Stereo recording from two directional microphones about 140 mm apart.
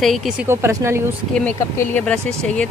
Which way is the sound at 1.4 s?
10° left (ahead or behind).